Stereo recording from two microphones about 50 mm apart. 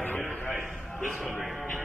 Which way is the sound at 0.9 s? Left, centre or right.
Centre.